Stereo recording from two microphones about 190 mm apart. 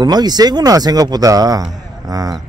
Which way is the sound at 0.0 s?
20° right (ahead or behind).